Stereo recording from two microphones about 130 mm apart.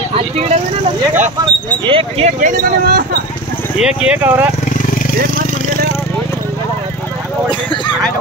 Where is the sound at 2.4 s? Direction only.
90° right.